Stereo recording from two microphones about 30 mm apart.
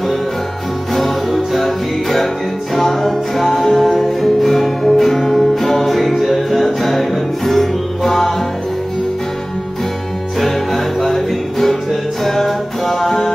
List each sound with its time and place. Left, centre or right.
0.9 s music: centre
10.4 s music: centre